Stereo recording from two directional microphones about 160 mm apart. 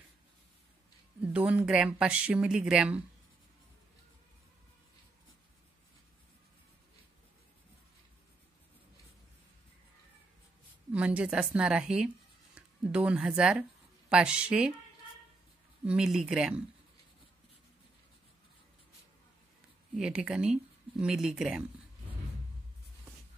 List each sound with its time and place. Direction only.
1.2 s speech: 10° right (ahead or behind)
10.9 s speech: 10° right (ahead or behind)
15.8 s speech: 5° right (ahead or behind)
20.0 s speech: 5° right (ahead or behind)